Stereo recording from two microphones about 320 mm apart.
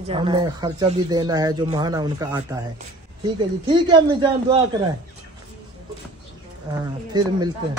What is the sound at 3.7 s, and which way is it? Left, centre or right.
Speech, centre.